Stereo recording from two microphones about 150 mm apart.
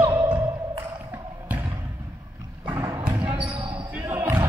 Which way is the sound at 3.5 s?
35° right (ahead or behind).